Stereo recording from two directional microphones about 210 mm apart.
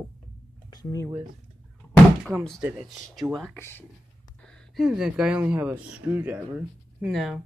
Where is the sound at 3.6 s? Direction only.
10° left (ahead or behind).